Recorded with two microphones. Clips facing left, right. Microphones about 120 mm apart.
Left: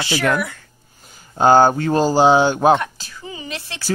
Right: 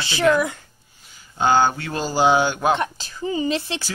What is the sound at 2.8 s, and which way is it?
Speech, 25° right (ahead or behind).